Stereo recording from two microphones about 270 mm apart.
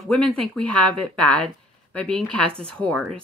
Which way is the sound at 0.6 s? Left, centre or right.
Right.